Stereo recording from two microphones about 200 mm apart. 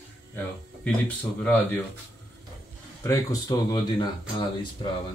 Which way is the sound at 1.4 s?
10° left (ahead or behind).